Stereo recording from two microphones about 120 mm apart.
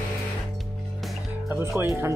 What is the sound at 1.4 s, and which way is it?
Music, 20° right (ahead or behind).